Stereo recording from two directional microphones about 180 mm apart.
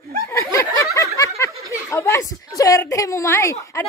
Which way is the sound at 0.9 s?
15° left (ahead or behind).